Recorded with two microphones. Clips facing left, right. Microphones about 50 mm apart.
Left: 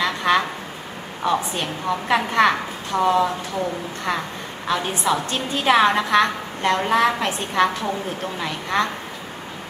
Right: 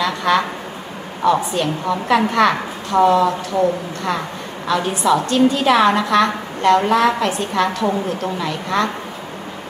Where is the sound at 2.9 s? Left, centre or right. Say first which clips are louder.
Right 7 dB; right.